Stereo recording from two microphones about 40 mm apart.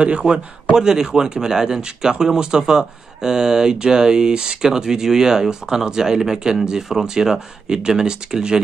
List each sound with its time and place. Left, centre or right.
0.7 s speech: centre
6.9 s speech: centre